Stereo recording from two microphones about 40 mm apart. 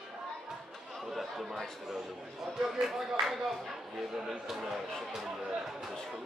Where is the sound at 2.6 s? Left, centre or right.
Centre.